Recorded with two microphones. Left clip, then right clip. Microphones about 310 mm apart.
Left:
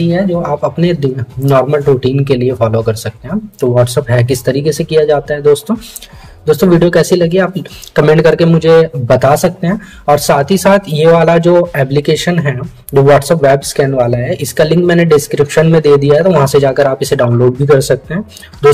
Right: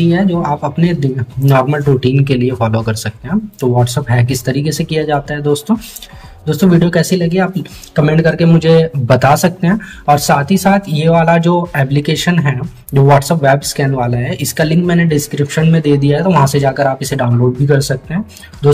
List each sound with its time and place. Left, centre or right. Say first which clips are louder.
0.0 s speech: left 1 dB; centre